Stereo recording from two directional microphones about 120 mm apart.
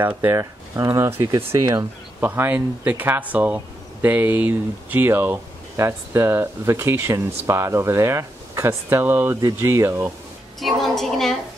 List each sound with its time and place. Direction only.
0.0 s speech: 15° right (ahead or behind)
10.6 s a woman's voice: centre (ahead or behind)